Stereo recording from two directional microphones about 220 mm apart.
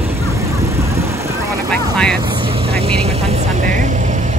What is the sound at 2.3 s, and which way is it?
Vehicle, 25° right (ahead or behind).